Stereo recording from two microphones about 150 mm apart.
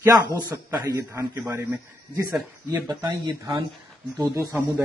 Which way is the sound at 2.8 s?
25° right (ahead or behind).